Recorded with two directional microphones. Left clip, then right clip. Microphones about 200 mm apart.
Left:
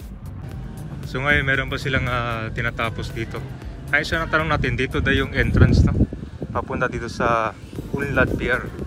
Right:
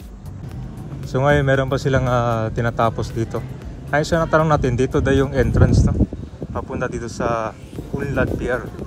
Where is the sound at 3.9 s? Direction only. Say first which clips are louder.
Right 3 dB; 20° right (ahead or behind).